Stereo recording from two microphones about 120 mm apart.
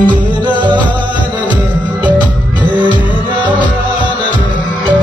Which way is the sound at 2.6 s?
10° right (ahead or behind).